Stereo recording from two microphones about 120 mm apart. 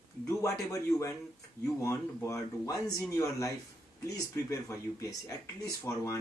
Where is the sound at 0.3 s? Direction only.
25° left (ahead or behind).